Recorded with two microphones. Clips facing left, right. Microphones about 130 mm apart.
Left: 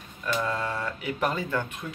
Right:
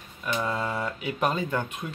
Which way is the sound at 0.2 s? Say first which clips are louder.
Even; 15° right (ahead or behind).